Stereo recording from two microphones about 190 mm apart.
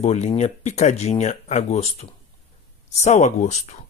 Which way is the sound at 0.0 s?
35° left (ahead or behind).